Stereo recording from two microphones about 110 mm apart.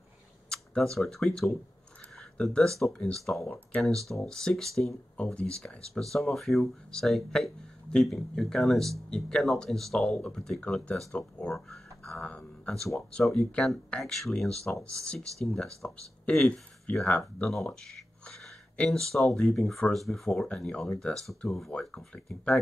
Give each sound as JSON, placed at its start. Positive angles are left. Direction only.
{"t": 0.5, "sound": "speech", "side_deg": 5}
{"t": 3.4, "sound": "speech", "side_deg": 15}
{"t": 3.8, "sound": "speech", "side_deg": 5}